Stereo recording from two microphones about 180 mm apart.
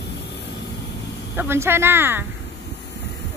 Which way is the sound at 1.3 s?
15° right (ahead or behind).